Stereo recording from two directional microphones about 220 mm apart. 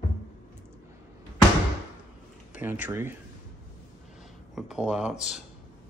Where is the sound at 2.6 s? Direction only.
10° right (ahead or behind).